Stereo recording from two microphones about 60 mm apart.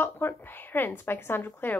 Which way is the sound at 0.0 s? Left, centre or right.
Left.